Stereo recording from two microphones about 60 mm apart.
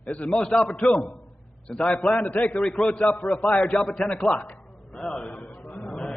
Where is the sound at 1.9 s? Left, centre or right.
Left.